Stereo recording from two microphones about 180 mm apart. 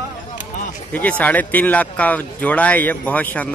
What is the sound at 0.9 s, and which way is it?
Speech, 10° left (ahead or behind).